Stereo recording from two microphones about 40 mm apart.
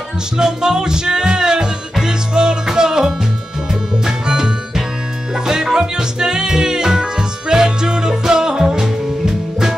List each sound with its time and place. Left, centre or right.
0.4 s music: centre